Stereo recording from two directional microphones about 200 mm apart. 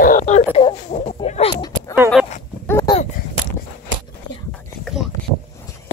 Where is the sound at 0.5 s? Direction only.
30° left (ahead or behind).